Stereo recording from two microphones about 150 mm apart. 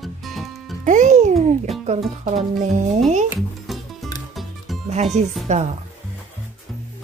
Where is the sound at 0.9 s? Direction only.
55° right (ahead or behind).